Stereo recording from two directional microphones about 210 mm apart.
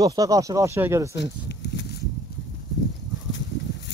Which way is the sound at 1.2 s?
55° left (ahead or behind).